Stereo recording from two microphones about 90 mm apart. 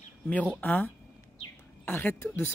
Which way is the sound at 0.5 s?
20° left (ahead or behind).